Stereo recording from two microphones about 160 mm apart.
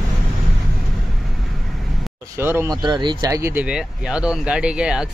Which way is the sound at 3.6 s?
5° right (ahead or behind).